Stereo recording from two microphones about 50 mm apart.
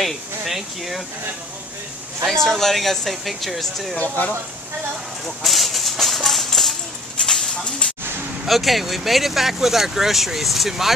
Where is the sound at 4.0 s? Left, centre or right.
Left.